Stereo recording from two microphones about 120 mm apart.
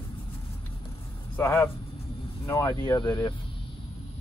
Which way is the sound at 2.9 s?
40° left (ahead or behind).